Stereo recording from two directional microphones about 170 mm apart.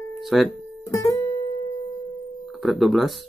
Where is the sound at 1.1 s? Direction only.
25° left (ahead or behind).